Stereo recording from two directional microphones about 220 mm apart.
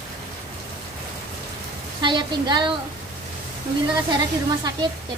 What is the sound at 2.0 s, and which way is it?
Speech, 20° right (ahead or behind).